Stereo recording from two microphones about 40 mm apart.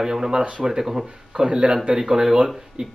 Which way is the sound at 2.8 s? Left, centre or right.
Right.